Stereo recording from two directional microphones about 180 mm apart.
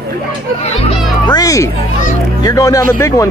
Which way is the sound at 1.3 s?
20° left (ahead or behind).